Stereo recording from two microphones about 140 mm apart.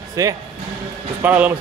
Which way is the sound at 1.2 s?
10° right (ahead or behind).